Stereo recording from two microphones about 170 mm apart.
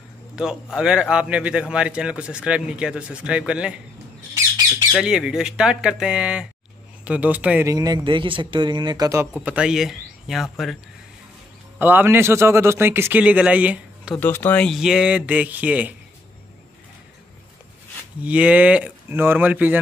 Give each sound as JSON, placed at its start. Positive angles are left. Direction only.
{"t": 0.4, "sound": "a man's voice", "side_deg": -5}
{"t": 4.9, "sound": "a man's voice", "side_deg": -5}
{"t": 7.7, "sound": "speech", "side_deg": -25}
{"t": 9.4, "sound": "speech", "side_deg": -5}
{"t": 11.8, "sound": "a man's voice", "side_deg": -10}
{"t": 14.1, "sound": "a man's voice", "side_deg": 10}
{"t": 18.2, "sound": "a man's voice", "side_deg": -10}